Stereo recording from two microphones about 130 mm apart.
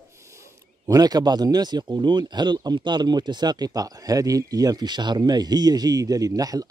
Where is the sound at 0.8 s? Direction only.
30° right (ahead or behind).